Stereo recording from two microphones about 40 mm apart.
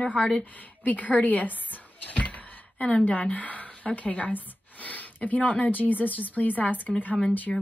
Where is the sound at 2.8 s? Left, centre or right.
Left.